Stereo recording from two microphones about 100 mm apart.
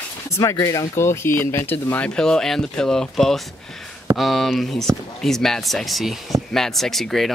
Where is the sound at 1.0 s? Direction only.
25° left (ahead or behind).